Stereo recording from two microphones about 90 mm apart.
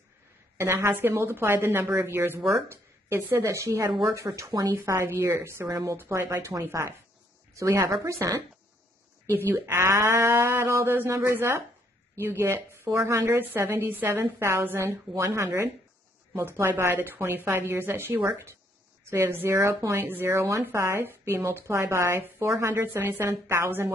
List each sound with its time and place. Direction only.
0.6 s a woman's voice: 25° right (ahead or behind)
2.1 s a woman's voice: 25° right (ahead or behind)
9.7 s a woman's voice: 30° right (ahead or behind)